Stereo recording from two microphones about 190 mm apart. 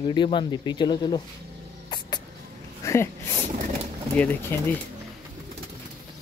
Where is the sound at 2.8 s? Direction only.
15° left (ahead or behind).